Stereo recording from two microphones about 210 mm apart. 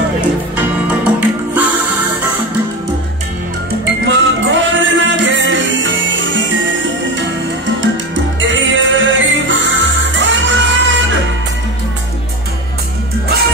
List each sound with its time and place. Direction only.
0.6 s music: 5° right (ahead or behind)
4.0 s music: 60° right (ahead or behind)
8.1 s music: 60° right (ahead or behind)